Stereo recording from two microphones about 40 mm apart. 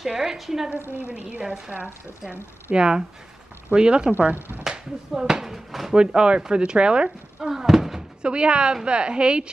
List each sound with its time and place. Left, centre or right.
0.1 s speech: centre
2.7 s speech: right; by 5.9 s centre
5.9 s speech: right
7.5 s thunk: centre
8.2 s speech: right